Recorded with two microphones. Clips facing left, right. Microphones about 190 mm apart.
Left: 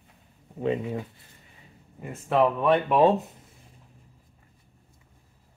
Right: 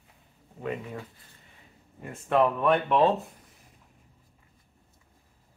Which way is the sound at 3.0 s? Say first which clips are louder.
Left 3 dB; 15° left (ahead or behind).